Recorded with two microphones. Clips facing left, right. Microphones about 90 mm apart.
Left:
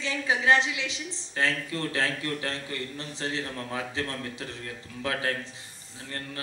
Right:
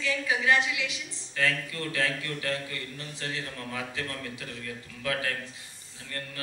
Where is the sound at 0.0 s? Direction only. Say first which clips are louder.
Left 1 dB; 30° left (ahead or behind).